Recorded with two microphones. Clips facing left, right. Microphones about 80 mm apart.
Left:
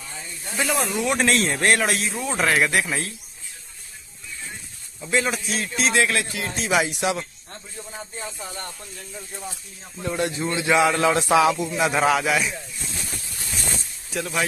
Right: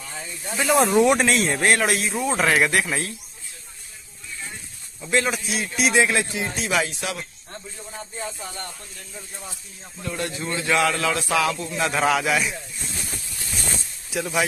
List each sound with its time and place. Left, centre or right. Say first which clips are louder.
0.7 s speech: right 12 dB; right
1.2 s speech: even; centre
5.0 s a man's voice: right 1 dB; centre; by 6.5 s right
6.7 s speech: left 5 dB; centre
8.2 s speech: right 2 dB; centre
10.0 s a man's voice: left 4 dB; left; by 12.5 s centre
14.1 s speech: right 2 dB; centre